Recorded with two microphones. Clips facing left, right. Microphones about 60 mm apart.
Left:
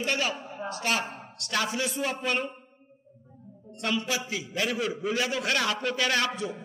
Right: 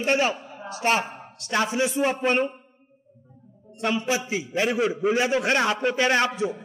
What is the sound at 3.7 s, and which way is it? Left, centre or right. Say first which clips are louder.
A man's voice: right 5 dB; right.